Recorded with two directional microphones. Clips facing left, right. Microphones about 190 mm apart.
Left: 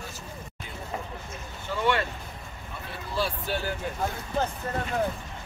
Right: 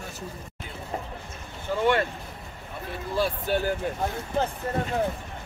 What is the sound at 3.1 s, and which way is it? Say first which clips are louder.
Speech: right 4 dB; 50° right (ahead or behind).